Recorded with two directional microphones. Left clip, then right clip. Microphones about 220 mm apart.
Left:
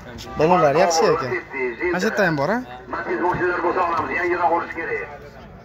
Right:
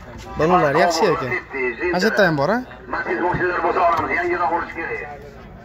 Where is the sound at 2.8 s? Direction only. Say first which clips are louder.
Right 1 dB; 20° right (ahead or behind).